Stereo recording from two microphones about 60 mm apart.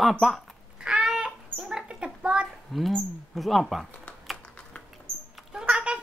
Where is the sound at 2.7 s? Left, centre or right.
Centre.